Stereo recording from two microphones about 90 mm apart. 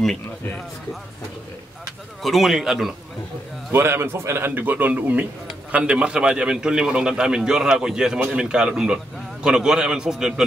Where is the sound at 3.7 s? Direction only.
25° right (ahead or behind).